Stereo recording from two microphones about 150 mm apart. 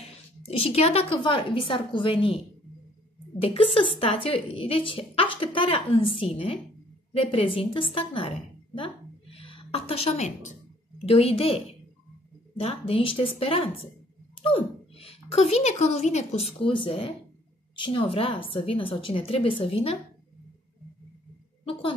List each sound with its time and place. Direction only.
0.5 s a woman's voice: 40° left (ahead or behind)